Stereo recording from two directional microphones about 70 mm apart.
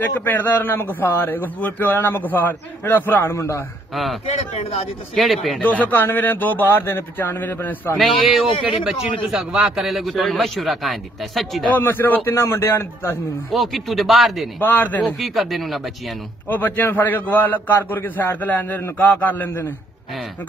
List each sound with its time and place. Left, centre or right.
0.0 s a man's voice: left
3.9 s a man's voice: centre
5.6 s speech: left
8.0 s a man's voice: centre
11.7 s speech: left
12.4 s a man's voice: left
13.5 s a man's voice: centre
14.6 s speech: left
15.0 s a man's voice: centre
16.4 s speech: left